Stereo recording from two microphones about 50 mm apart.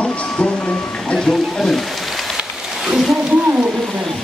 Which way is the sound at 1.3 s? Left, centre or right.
Centre.